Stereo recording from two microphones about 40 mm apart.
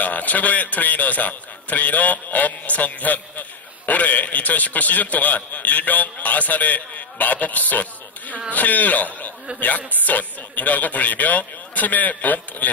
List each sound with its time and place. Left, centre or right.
0.0 s a man's voice: left